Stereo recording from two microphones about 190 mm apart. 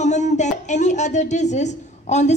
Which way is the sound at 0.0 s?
40° left (ahead or behind).